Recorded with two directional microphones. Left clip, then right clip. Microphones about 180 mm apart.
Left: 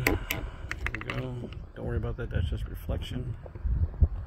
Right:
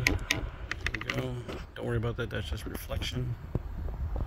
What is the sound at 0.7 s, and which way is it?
Typing, 15° left (ahead or behind).